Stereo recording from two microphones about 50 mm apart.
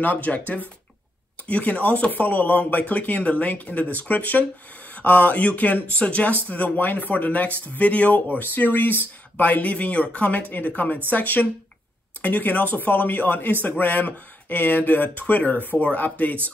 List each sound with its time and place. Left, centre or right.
0.0 s speech: left
1.5 s speech: left